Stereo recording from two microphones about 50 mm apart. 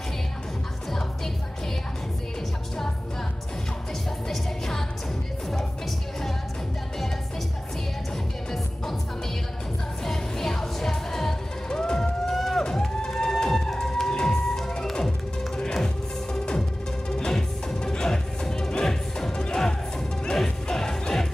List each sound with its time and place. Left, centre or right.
4.3 s music: centre
10.0 s music: centre